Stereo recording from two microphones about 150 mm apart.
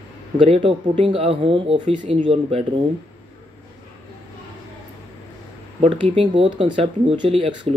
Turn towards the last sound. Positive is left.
turn(degrees=-35)  # may be behind; listen again after turning